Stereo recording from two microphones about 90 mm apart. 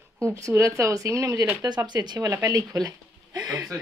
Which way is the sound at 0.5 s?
35° right (ahead or behind).